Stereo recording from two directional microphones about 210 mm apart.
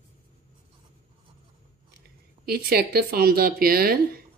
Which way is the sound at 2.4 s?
45° right (ahead or behind).